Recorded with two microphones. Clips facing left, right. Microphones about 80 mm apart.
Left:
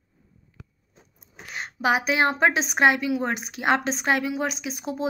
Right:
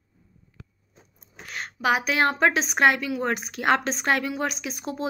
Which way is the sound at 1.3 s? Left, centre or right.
Centre.